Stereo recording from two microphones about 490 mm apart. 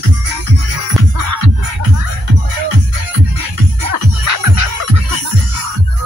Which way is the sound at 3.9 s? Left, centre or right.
Right.